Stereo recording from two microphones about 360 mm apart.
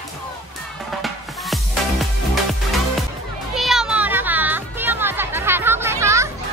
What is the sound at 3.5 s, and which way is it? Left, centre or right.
Music, centre.